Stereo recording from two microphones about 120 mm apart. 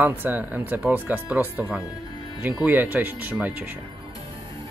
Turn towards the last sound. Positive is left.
turn(degrees=-10)  # may be behind; listen again after turning